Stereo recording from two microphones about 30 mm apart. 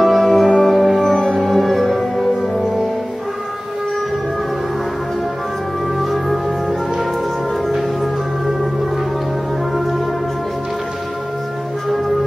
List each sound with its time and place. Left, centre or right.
0.0 s music: centre
5.9 s music: centre